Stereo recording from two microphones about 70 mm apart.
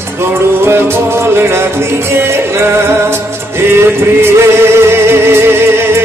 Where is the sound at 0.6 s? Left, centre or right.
Right.